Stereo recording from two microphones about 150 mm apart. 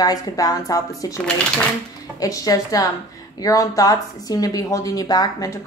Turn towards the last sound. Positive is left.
turn(degrees=25)  # may be behind; listen again after turning